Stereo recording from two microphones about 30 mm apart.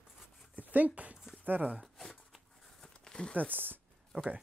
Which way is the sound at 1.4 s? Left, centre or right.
Right.